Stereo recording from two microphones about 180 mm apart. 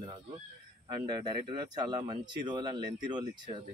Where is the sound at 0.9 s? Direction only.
25° right (ahead or behind).